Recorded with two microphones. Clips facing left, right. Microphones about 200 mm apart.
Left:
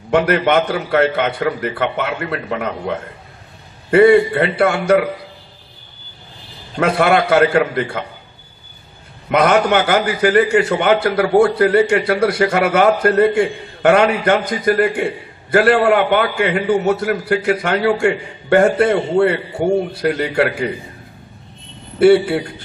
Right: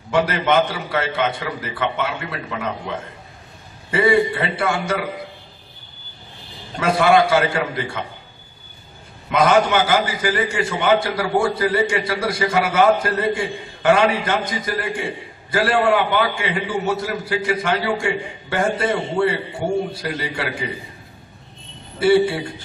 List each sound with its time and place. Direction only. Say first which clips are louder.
0.1 s a man's voice: left 4 dB; 60° left (ahead or behind)
6.8 s a man's voice: left 1 dB; 60° left (ahead or behind)
9.3 s a man's voice: left 2 dB; 60° left (ahead or behind)
22.0 s a man's voice: left 5 dB; 60° left (ahead or behind)